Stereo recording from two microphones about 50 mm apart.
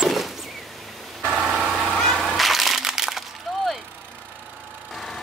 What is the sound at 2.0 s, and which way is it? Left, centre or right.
Music, centre.